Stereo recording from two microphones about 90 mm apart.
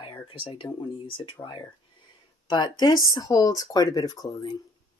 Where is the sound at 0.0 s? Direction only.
70° left (ahead or behind).